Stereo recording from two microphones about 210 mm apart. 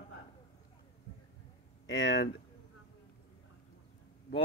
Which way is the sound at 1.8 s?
65° left (ahead or behind).